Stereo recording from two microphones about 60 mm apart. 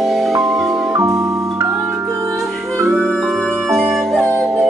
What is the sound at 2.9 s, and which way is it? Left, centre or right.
Organ, centre.